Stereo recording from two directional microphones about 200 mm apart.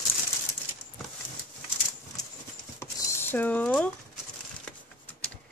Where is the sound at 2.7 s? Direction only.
15° left (ahead or behind).